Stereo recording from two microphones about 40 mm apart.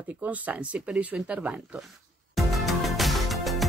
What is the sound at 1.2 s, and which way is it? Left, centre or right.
Speech, right.